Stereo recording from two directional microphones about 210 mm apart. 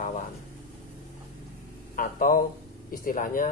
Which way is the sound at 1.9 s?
40° left (ahead or behind).